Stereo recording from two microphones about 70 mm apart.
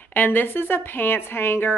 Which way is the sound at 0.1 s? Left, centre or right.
Left.